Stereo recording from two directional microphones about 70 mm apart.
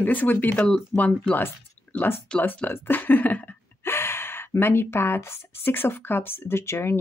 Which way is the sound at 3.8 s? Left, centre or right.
Left.